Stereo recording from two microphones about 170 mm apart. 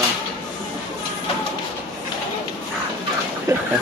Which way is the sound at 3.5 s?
20° right (ahead or behind).